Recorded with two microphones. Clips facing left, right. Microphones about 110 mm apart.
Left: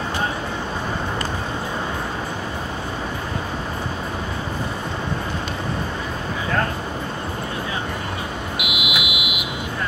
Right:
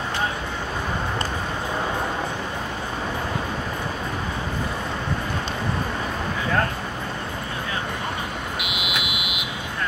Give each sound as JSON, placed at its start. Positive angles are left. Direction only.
{"t": 8.5, "sound": "fire alarm", "side_deg": 10}